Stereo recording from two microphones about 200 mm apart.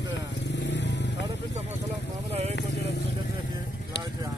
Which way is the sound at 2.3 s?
30° right (ahead or behind).